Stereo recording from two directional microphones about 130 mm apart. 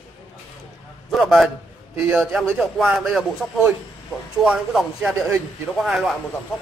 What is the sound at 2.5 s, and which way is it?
A man's voice, 5° right (ahead or behind).